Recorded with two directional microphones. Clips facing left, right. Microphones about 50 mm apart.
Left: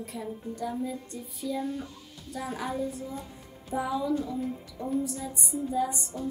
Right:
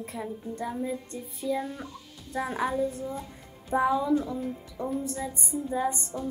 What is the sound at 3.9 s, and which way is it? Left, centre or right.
Speech, right.